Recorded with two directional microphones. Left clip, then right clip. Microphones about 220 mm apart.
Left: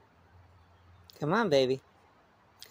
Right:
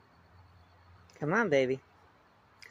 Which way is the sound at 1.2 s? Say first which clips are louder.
Left 1 dB; 15° left (ahead or behind).